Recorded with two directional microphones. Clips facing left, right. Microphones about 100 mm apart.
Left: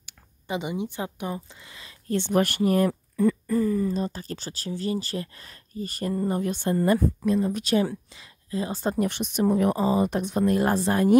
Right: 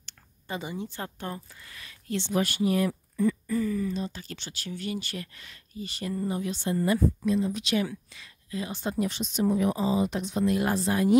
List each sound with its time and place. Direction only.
0.0 s a sound: 15° left (ahead or behind)
0.9 s a woman's voice: 15° left (ahead or behind)
2.0 s speech: 50° left (ahead or behind)
7.8 s speech: 30° left (ahead or behind)
8.7 s speech: 50° left (ahead or behind)